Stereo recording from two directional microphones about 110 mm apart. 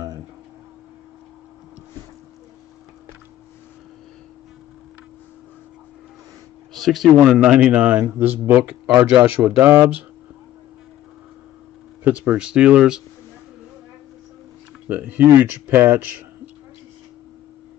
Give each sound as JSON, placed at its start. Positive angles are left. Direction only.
{"t": 6.7, "sound": "a man's voice", "side_deg": 0}
{"t": 12.0, "sound": "a man's voice", "side_deg": -15}
{"t": 14.9, "sound": "a man's voice", "side_deg": -15}